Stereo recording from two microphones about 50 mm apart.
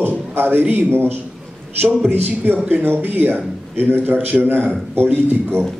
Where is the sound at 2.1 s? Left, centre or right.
Right.